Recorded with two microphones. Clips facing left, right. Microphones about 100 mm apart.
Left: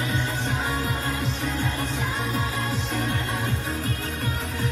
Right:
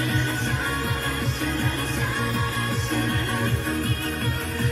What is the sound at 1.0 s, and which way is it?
Music, 50° right (ahead or behind).